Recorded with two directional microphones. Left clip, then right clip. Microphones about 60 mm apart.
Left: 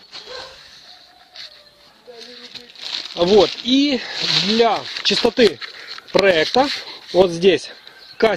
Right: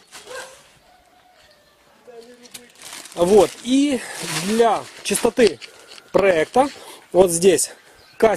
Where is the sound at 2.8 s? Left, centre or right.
Right.